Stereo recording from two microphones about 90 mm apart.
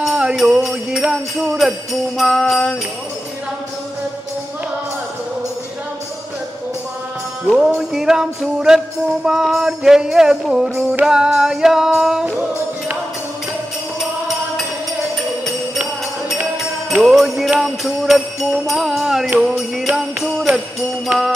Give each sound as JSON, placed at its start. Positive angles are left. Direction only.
{"t": 0.0, "sound": "jingle bell", "side_deg": -10}
{"t": 7.5, "sound": "music", "side_deg": -5}
{"t": 16.9, "sound": "jingle bell", "side_deg": -5}
{"t": 19.9, "sound": "music", "side_deg": -15}